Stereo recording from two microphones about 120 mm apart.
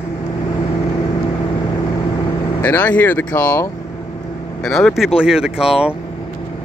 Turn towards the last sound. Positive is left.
turn(degrees=-5)  # may be behind; listen again after turning